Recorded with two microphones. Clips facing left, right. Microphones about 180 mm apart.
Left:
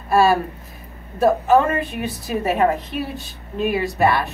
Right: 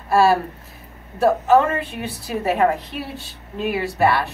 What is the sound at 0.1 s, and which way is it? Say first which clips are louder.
A woman's voice: even; 15° left (ahead or behind).